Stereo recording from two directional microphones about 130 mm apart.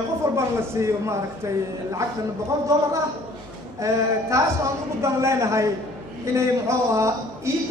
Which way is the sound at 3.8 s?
25° right (ahead or behind).